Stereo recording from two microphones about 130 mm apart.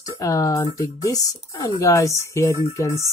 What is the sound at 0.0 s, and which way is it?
Speech, 25° left (ahead or behind).